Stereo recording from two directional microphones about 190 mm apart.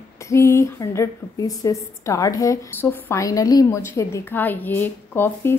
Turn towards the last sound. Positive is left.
turn(degrees=10)  # may be behind; listen again after turning